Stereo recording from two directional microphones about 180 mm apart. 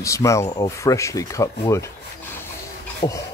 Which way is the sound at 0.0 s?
15° left (ahead or behind).